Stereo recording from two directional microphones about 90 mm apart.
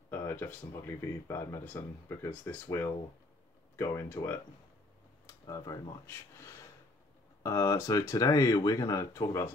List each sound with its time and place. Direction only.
0.1 s speech: 25° left (ahead or behind)
1.2 s speech: 35° left (ahead or behind)
5.5 s speech: 45° left (ahead or behind)
6.0 s speech: 30° left (ahead or behind)